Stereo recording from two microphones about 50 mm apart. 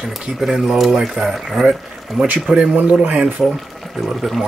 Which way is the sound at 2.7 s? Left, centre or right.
Right.